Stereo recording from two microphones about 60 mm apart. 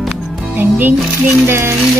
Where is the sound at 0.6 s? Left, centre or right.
Right.